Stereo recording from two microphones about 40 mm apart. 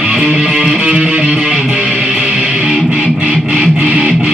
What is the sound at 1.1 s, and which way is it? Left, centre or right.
Music, right.